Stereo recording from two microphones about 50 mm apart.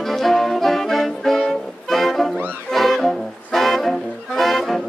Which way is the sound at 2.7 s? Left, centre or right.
Centre.